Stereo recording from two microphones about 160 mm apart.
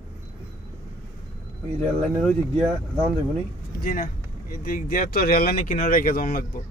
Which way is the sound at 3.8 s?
60° left (ahead or behind).